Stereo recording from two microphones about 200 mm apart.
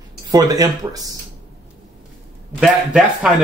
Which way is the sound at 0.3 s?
20° right (ahead or behind).